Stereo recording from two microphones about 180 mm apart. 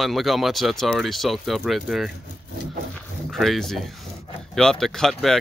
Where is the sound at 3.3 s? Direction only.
Centre (ahead or behind).